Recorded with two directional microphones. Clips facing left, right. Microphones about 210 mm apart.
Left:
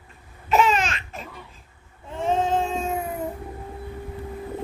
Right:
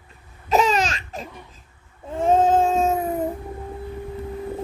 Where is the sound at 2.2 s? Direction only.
45° right (ahead or behind).